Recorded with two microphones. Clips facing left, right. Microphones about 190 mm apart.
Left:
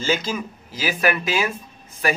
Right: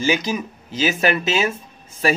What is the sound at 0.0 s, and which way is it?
Speech, 15° right (ahead or behind).